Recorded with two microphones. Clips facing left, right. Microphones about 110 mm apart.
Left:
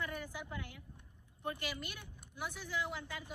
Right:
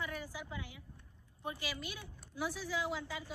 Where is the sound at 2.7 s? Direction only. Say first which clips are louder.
Even; 15° right (ahead or behind).